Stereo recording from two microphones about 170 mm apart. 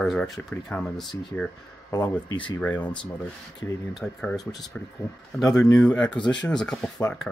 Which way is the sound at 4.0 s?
Centre (ahead or behind).